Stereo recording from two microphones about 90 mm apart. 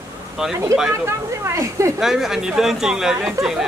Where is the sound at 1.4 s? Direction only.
35° right (ahead or behind).